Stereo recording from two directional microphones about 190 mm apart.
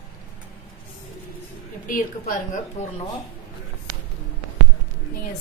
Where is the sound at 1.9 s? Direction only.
45° left (ahead or behind).